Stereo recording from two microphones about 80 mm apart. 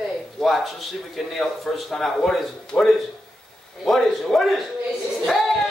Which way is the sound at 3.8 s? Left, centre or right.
Centre.